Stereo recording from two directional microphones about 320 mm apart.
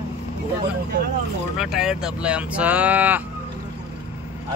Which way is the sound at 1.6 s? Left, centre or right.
Centre.